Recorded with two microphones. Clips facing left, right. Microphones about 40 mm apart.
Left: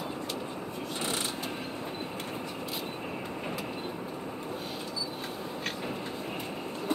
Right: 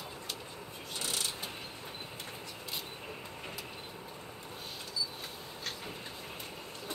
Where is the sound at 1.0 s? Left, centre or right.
Left.